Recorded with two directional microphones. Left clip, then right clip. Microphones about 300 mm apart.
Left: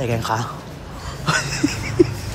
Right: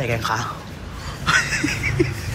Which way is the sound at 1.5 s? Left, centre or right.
Centre.